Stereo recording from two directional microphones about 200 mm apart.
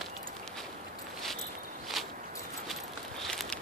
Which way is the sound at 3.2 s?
Centre (ahead or behind).